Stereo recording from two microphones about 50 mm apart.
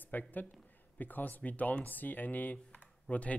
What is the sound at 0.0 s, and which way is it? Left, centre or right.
A man's voice, left.